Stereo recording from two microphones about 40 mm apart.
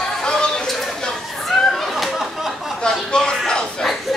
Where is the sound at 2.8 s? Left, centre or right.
Centre.